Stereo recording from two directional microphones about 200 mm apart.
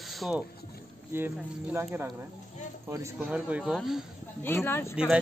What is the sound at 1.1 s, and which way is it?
Speech, 10° right (ahead or behind).